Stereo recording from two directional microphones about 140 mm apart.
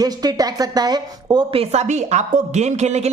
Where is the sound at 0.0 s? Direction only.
30° right (ahead or behind).